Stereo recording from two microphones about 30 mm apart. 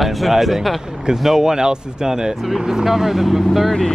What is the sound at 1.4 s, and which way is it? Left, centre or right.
Speech, right.